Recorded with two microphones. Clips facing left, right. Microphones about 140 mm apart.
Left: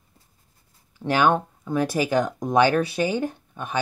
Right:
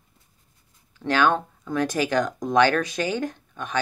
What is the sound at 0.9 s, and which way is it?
Speech, 15° left (ahead or behind).